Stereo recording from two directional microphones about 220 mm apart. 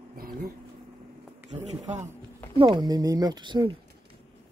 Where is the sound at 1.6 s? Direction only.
30° right (ahead or behind).